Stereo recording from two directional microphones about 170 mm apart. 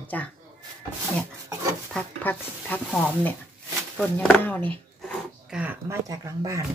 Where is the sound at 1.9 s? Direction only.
5° left (ahead or behind).